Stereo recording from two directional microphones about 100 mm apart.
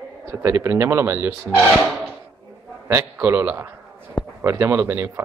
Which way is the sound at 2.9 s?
25° right (ahead or behind).